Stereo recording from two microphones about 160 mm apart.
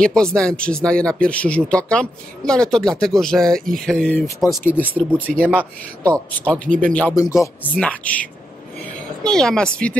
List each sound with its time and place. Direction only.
0.0 s speech: 5° left (ahead or behind)
7.2 s speech: 20° left (ahead or behind)
7.7 s speech: 10° left (ahead or behind)